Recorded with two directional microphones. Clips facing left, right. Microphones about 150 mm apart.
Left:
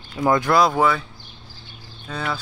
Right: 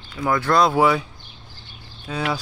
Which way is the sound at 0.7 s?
10° right (ahead or behind).